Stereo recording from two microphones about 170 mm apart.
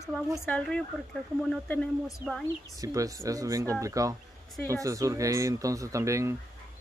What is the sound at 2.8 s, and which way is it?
Speech, 20° right (ahead or behind).